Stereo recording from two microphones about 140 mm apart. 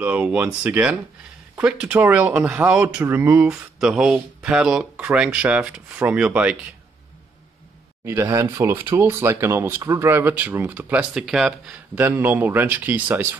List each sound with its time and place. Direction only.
0.0 s speech: 10° right (ahead or behind)
8.0 s speech: 20° right (ahead or behind)
12.0 s speech: 15° right (ahead or behind)